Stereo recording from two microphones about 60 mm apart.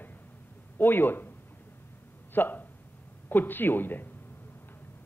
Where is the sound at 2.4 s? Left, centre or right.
Left.